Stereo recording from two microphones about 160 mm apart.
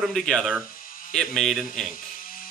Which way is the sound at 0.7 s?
60° left (ahead or behind).